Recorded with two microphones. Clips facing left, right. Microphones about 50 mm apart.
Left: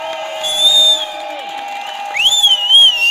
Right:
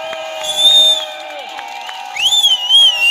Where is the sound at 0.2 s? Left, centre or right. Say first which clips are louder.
Right 1 dB; centre.